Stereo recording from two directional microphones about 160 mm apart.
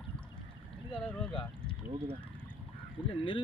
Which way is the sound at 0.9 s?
5° left (ahead or behind).